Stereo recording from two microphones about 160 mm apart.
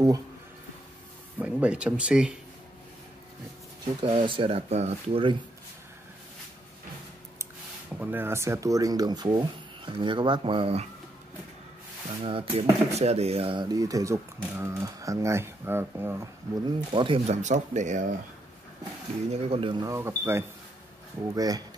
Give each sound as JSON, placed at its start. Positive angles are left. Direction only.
{"t": 1.4, "sound": "speech", "side_deg": -10}
{"t": 3.8, "sound": "speech", "side_deg": -35}
{"t": 8.0, "sound": "speech", "side_deg": -15}
{"t": 12.2, "sound": "speech", "side_deg": -35}
{"t": 16.6, "sound": "speech", "side_deg": -30}
{"t": 17.3, "sound": "speech", "side_deg": -50}
{"t": 19.3, "sound": "speech", "side_deg": -35}